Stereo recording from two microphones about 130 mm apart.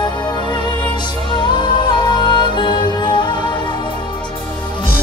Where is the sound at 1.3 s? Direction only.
35° left (ahead or behind).